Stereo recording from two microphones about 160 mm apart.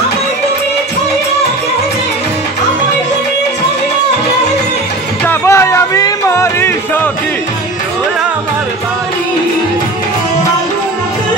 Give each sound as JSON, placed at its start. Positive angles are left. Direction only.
{"t": 5.2, "sound": "music", "side_deg": 15}